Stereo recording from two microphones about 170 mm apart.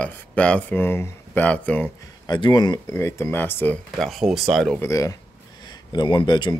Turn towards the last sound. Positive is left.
turn(degrees=25)  # may be behind; listen again after turning